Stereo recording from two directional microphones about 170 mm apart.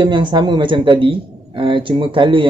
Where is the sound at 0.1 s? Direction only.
25° right (ahead or behind).